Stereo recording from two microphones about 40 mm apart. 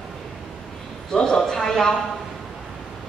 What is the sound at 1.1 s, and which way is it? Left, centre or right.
Speech, left.